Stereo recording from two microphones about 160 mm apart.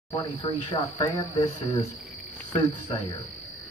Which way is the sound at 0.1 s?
25° left (ahead or behind).